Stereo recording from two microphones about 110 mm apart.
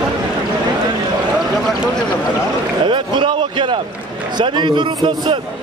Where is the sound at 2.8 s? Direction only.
45° right (ahead or behind).